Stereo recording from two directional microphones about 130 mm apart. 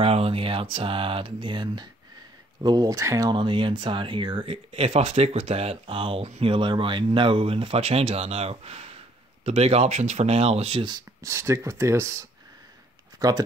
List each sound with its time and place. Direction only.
0.0 s speech: 50° right (ahead or behind); by 3.3 s 25° right (ahead or behind)
3.3 s speech: 40° right (ahead or behind)
6.5 s speech: 40° right (ahead or behind)
11.2 s speech: 20° right (ahead or behind)